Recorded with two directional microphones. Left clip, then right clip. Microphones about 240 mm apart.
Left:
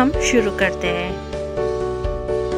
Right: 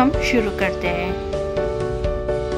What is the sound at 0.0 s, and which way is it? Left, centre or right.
Speech, centre.